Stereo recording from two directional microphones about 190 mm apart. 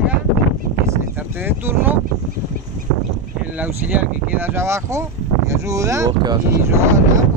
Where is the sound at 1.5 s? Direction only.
10° right (ahead or behind).